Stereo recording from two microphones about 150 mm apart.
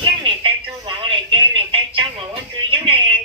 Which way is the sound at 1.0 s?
35° right (ahead or behind).